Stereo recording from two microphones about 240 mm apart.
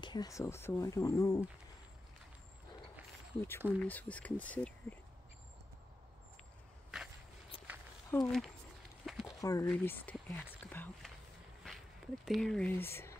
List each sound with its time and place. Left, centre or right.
0.0 s speech: centre
3.3 s speech: centre
6.9 s walk: centre
7.5 s walk: left
8.1 s speech: centre
9.0 s a sound: centre
9.4 s speech: centre
12.3 s speech: centre